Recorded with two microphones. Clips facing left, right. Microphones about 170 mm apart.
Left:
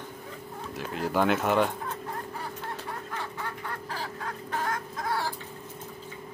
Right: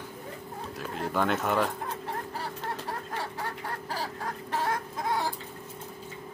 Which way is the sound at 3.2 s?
35° right (ahead or behind).